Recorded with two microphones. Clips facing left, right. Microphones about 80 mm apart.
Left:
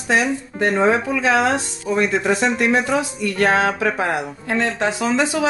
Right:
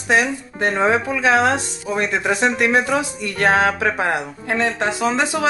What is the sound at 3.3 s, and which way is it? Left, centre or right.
Speech, right.